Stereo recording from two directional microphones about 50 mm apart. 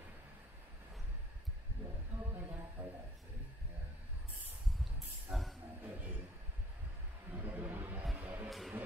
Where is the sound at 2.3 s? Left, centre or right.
Right.